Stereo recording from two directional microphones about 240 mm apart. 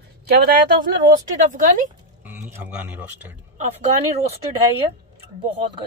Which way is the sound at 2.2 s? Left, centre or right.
Centre.